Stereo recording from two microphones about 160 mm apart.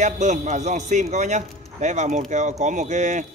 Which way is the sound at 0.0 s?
50° right (ahead or behind).